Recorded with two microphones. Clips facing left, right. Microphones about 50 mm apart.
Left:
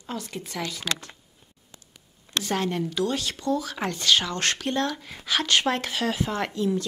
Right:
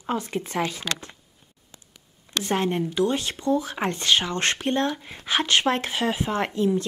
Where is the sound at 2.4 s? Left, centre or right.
Right.